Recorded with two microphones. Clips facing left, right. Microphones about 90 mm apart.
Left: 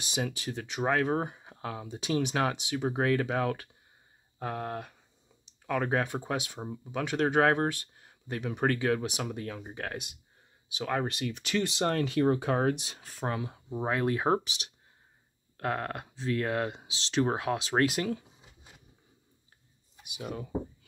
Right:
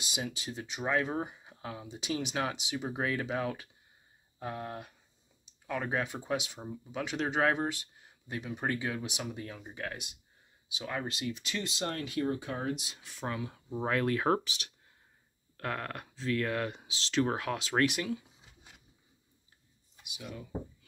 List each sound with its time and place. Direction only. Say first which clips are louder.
0.0 s speech: left 5 dB; 50° left (ahead or behind); by 13.0 s 75° left (ahead or behind)
13.0 s speech: left 5 dB; 35° left (ahead or behind)
13.8 s speech: left 1 dB; 20° left (ahead or behind); by 18.2 s 40° left (ahead or behind)
20.2 s speech: left 6 dB; 50° left (ahead or behind)